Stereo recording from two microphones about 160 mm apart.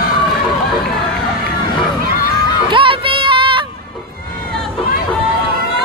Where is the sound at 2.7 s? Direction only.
30° right (ahead or behind).